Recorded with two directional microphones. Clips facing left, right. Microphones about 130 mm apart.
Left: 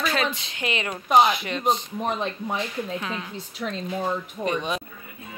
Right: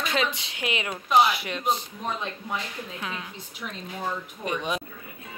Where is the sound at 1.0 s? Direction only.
45° left (ahead or behind).